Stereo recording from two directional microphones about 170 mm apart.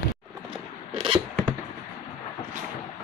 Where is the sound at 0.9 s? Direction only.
30° right (ahead or behind).